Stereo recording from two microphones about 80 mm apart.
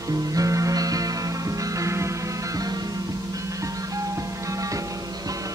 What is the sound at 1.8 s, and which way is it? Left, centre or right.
Music, right.